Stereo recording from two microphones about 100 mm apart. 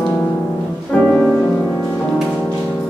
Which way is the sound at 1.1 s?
10° left (ahead or behind).